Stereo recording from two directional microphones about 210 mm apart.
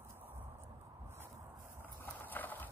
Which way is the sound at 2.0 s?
10° left (ahead or behind).